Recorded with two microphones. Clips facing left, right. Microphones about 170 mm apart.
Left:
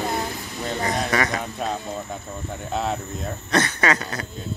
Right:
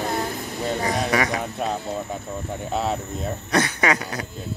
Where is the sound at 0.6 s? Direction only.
10° right (ahead or behind).